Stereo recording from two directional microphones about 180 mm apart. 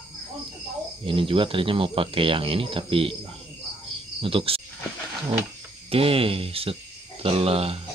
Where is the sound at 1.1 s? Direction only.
30° right (ahead or behind).